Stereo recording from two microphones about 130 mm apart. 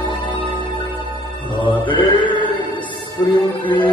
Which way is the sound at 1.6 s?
35° left (ahead or behind).